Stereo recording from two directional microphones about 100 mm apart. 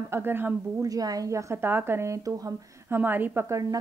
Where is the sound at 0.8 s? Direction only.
35° right (ahead or behind).